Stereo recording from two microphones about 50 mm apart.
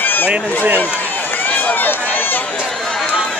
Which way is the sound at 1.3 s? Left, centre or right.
Left.